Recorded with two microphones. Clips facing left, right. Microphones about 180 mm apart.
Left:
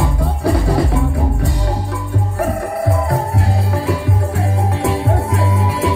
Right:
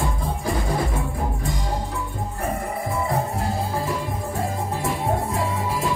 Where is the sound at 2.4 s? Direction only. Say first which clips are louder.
Left 8 dB; 75° left (ahead or behind).